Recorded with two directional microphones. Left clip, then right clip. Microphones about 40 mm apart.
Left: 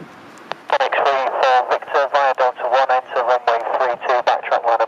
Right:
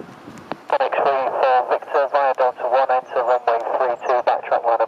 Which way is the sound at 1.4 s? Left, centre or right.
Centre.